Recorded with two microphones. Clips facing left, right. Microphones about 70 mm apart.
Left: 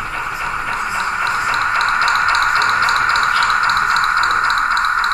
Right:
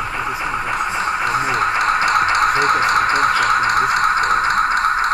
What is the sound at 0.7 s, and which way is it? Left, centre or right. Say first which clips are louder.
Music: even; centre.